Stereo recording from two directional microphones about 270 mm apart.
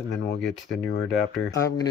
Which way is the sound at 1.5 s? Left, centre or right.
Centre.